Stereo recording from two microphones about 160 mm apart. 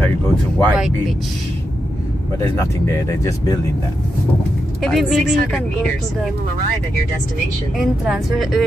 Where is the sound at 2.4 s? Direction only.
15° left (ahead or behind).